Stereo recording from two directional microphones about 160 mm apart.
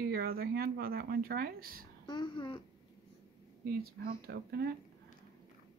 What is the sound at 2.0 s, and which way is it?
Speech, 30° left (ahead or behind).